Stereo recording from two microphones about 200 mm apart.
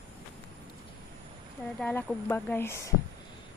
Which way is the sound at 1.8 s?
10° left (ahead or behind).